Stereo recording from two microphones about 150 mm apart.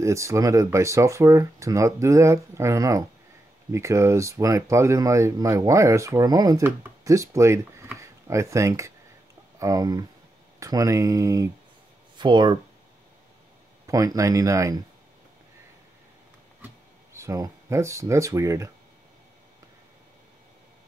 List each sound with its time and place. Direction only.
0.0 s speech: 20° right (ahead or behind)
13.8 s speech: 20° right (ahead or behind)
16.6 s speech: 20° right (ahead or behind)